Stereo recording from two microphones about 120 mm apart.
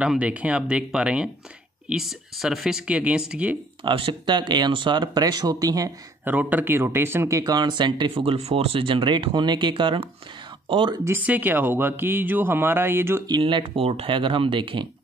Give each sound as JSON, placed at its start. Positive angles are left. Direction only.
{"t": 0.0, "sound": "speech", "side_deg": -10}
{"t": 3.8, "sound": "speech", "side_deg": -45}
{"t": 6.2, "sound": "speech", "side_deg": -15}
{"t": 11.1, "sound": "speech", "side_deg": -15}
{"t": 13.4, "sound": "speech", "side_deg": -45}